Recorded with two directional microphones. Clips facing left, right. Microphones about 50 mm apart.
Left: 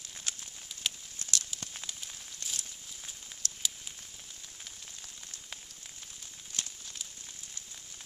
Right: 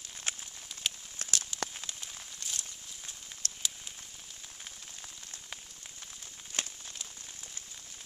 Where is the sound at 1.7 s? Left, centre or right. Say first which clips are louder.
Right 1 dB; centre.